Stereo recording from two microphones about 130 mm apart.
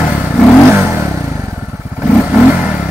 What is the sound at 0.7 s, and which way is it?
Vehicle, 15° right (ahead or behind).